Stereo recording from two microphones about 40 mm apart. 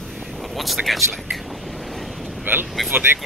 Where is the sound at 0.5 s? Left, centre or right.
Centre.